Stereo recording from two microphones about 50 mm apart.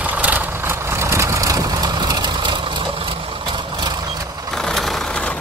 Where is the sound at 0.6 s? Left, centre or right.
Right.